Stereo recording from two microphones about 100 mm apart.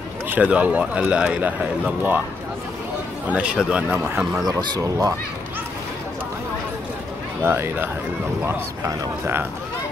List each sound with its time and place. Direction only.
0.3 s speech: 15° right (ahead or behind)
3.3 s speech: 10° right (ahead or behind)
4.2 s speech: 5° right (ahead or behind)
4.5 s a man's voice: 40° right (ahead or behind)
7.4 s speech: 20° right (ahead or behind)